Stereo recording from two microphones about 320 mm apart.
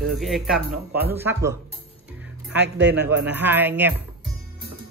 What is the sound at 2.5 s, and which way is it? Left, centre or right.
Speech, right.